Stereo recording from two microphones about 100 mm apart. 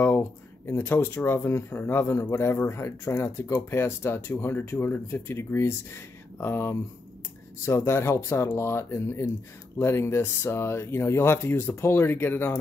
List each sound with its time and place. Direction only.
0.2 s speech: 25° left (ahead or behind)